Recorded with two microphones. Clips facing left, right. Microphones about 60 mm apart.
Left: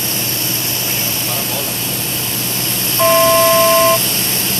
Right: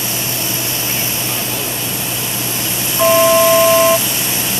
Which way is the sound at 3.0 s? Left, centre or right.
Centre.